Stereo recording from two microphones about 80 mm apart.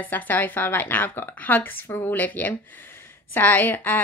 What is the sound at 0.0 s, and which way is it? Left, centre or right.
A woman's voice, left.